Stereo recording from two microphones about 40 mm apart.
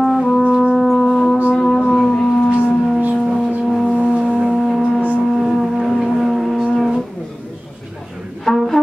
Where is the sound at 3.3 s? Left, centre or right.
Centre.